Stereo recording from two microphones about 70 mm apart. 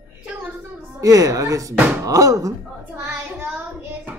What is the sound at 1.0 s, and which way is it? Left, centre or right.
A woman's voice, right.